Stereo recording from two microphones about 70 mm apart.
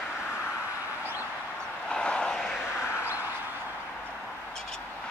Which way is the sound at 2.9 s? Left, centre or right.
Left.